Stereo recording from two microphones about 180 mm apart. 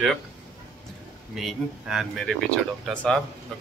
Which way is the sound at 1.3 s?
Centre (ahead or behind).